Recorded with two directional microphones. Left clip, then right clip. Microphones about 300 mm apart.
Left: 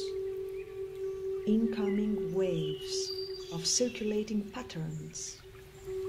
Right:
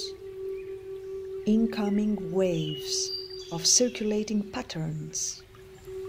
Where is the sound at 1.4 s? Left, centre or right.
Right.